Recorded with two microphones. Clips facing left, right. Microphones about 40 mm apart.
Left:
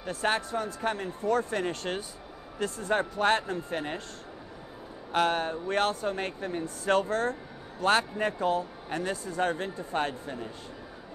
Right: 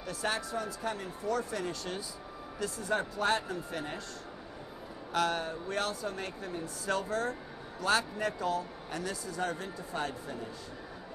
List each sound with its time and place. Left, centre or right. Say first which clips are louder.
0.0 s speech: left 5 dB; left
5.1 s speech: left 5 dB; left